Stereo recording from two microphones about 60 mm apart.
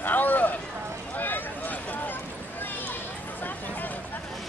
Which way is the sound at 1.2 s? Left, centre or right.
Left.